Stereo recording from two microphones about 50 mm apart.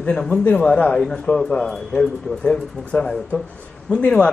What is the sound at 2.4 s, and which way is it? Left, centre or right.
A man's voice, left.